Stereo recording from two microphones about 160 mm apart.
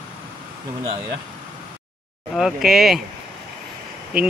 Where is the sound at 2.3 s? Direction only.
5° right (ahead or behind).